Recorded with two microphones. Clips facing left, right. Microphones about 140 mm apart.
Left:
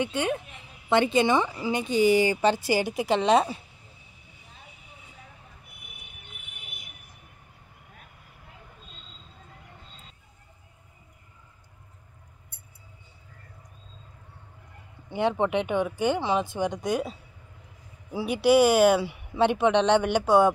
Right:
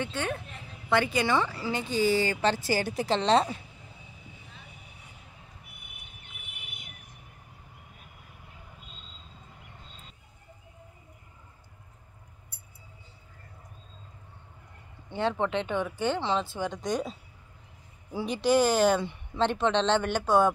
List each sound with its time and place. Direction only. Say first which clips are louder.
0.0 s a woman's voice: left 5 dB; 15° left (ahead or behind)
15.0 s a woman's voice: left 3 dB; 15° left (ahead or behind)
18.1 s a woman's voice: left 4 dB; 10° left (ahead or behind)